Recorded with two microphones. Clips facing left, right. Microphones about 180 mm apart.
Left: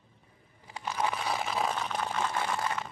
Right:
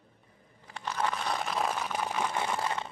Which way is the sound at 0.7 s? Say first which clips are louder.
Even; 10° left (ahead or behind).